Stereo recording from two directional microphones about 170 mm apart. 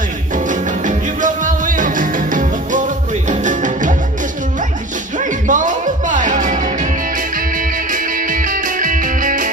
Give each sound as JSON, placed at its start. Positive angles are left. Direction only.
{"t": 0.5, "sound": "music", "side_deg": -50}
{"t": 5.2, "sound": "music", "side_deg": -50}